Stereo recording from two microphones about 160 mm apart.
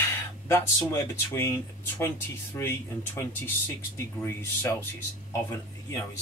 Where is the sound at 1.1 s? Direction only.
15° left (ahead or behind).